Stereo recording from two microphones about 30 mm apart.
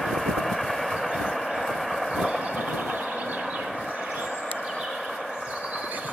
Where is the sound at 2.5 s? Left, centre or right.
Right.